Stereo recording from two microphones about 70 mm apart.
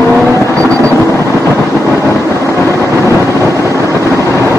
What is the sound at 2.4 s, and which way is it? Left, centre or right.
Vehicle, right.